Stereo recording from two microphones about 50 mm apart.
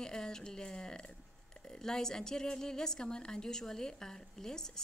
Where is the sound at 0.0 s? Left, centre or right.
Centre.